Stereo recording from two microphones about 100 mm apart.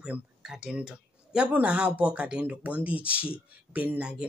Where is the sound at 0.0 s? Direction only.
5° right (ahead or behind).